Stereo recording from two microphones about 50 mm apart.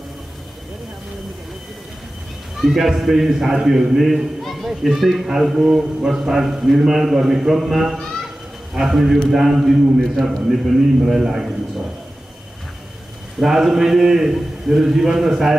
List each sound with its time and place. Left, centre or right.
2.6 s a man's voice: centre
4.4 s children playing: centre
4.6 s a man's voice: centre
13.4 s a man's voice: centre